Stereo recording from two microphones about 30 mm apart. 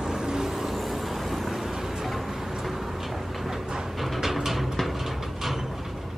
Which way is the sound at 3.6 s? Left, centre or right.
Centre.